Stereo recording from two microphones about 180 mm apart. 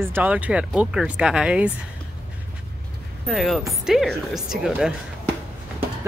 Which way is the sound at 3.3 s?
Centre (ahead or behind).